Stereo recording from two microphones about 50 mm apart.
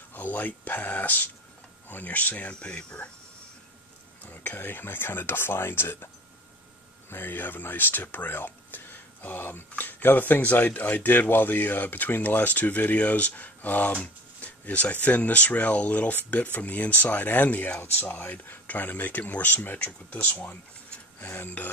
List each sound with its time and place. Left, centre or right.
0.1 s speech: left
4.2 s speech: left
7.1 s speech: left
21.3 s speech: left